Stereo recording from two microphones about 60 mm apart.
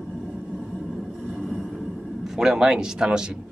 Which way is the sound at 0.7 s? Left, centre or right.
Centre.